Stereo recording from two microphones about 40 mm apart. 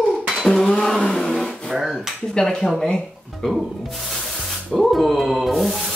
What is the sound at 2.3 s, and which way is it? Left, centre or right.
Speech, centre.